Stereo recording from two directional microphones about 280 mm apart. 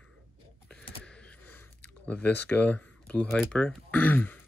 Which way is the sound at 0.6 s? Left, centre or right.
Centre.